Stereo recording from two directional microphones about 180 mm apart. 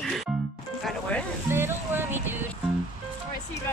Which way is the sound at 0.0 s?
Centre (ahead or behind).